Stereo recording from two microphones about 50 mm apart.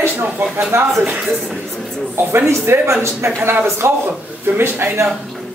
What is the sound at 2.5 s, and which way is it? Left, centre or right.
Speech, right.